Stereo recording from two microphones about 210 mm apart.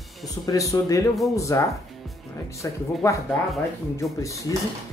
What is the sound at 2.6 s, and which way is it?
A man's voice, 15° left (ahead or behind).